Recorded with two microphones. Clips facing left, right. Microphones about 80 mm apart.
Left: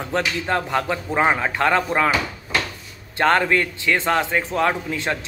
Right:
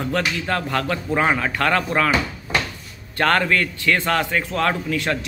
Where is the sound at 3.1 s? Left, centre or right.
Centre.